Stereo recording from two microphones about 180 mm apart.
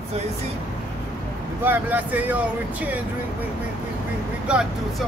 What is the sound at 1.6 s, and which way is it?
Speech, 10° right (ahead or behind).